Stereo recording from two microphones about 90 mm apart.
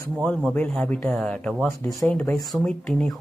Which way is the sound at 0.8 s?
20° left (ahead or behind).